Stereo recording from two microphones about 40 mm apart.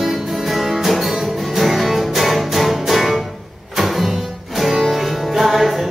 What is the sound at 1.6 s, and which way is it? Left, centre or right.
Music, centre.